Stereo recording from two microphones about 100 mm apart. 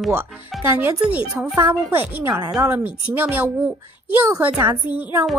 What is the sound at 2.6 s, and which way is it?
Speech, 20° right (ahead or behind).